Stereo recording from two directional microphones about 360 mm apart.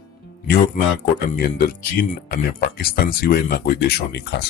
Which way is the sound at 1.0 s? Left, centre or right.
Left.